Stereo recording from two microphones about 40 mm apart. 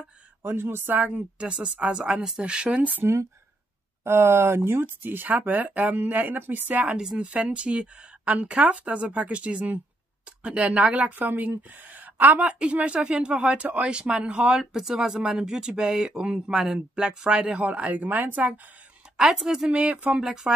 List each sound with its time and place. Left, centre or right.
0.4 s speech: right
0.9 s speech: right
1.4 s a man's voice: right
3.0 s speech: right
5.0 s speech: right
7.2 s a woman's voice: right
8.7 s a woman's voice: right
11.9 s a sound: right
12.4 s a man's voice: right
14.6 s a man's voice: centre
17.4 s a woman's voice: right
19.1 s speech: centre
19.7 s a man's voice: right